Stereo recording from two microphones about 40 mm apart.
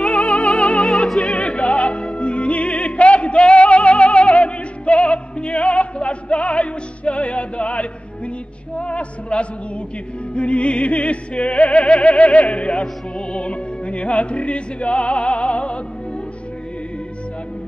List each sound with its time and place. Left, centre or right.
0.0 s music: left
0.8 s opera: centre
1.3 s music: left
12.0 s a sound: left
12.4 s music: left